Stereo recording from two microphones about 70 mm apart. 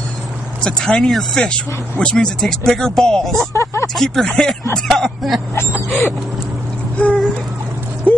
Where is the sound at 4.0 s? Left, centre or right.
Centre.